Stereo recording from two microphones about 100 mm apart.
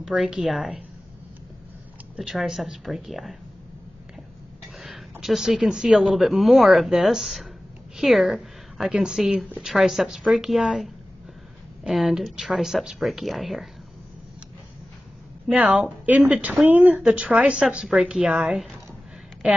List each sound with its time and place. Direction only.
0.0 s speech: 5° right (ahead or behind)
2.1 s speech: 5° right (ahead or behind)
4.7 s a sound: centre (ahead or behind)
5.2 s a woman's voice: centre (ahead or behind)
15.5 s speech: 10° right (ahead or behind)